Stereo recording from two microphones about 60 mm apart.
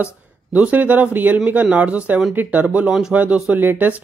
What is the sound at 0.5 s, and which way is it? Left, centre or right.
A man's voice, right.